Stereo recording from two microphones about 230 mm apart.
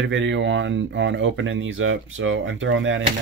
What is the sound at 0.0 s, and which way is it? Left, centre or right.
Speech, right.